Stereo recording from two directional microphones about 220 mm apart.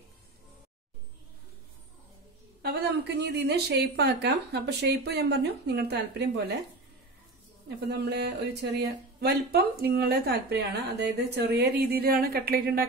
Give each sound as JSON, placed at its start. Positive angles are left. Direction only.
{"t": 2.6, "sound": "a woman's voice", "side_deg": -50}
{"t": 7.6, "sound": "a woman's voice", "side_deg": -50}